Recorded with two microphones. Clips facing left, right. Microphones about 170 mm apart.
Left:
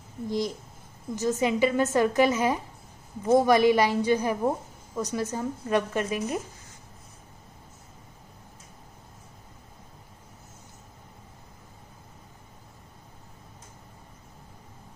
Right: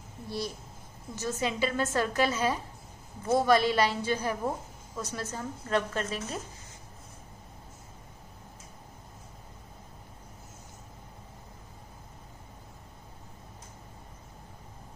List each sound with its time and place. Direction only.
1.1 s a woman's voice: 15° left (ahead or behind)